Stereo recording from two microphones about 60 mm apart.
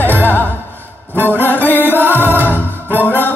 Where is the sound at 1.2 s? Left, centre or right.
Left.